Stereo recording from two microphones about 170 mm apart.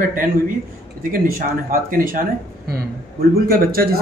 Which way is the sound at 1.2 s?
55° right (ahead or behind).